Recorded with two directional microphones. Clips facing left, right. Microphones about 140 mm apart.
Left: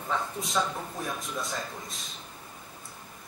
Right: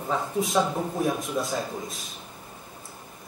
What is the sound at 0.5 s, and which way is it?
Speech, 25° right (ahead or behind).